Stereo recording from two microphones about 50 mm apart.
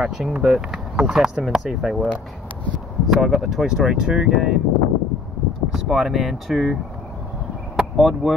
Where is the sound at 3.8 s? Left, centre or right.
Centre.